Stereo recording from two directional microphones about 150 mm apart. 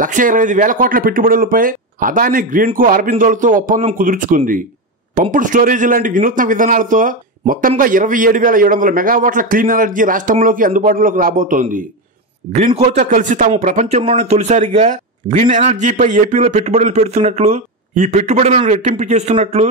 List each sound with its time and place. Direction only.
0.0 s a man's voice: 60° right (ahead or behind)
12.5 s a man's voice: 45° right (ahead or behind)